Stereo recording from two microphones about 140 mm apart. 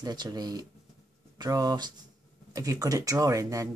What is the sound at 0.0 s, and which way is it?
Speech, 30° right (ahead or behind).